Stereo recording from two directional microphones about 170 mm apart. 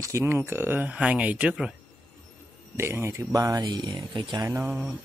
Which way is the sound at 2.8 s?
15° right (ahead or behind).